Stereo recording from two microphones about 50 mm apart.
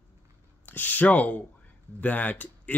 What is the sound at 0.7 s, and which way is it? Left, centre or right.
Speech, left.